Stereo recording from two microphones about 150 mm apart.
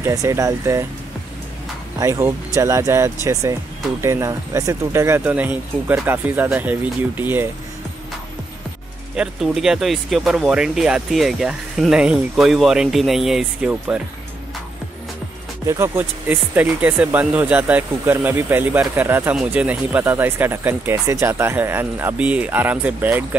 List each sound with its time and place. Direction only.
0.0 s speech: 20° right (ahead or behind)
2.0 s speech: 20° right (ahead or behind)
9.1 s speech: 5° right (ahead or behind)
15.6 s speech: 20° right (ahead or behind)